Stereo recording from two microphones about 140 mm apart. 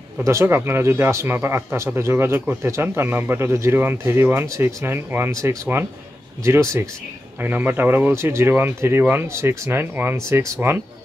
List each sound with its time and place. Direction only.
0.2 s speech: 20° right (ahead or behind)